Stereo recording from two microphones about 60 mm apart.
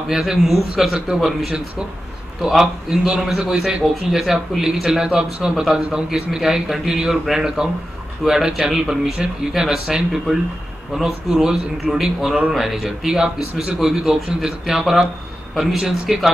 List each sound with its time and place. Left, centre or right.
0.1 s a man's voice: centre